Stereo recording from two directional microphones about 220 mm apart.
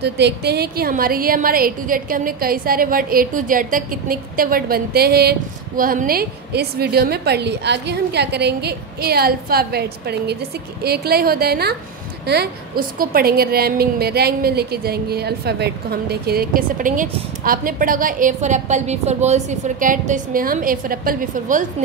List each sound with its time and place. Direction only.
0.0 s a woman's voice: 50° right (ahead or behind)